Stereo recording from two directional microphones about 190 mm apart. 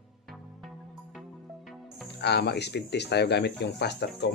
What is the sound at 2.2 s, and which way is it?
Speech, 60° left (ahead or behind).